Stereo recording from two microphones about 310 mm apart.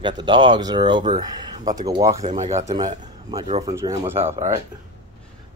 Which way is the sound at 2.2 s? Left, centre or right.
Right.